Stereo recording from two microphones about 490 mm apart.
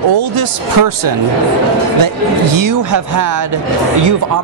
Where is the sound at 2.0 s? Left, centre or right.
Right.